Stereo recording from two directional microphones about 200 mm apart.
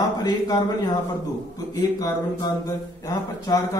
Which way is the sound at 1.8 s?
15° left (ahead or behind).